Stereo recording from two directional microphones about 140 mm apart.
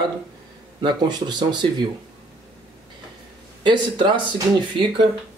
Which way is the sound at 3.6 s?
35° right (ahead or behind).